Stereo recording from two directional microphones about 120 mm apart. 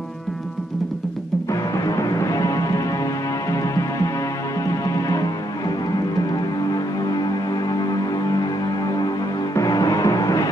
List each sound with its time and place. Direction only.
1.5 s music: 30° left (ahead or behind)
9.6 s music: 30° left (ahead or behind)